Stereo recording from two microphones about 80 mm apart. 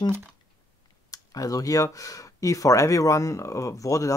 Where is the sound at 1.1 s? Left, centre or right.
Left.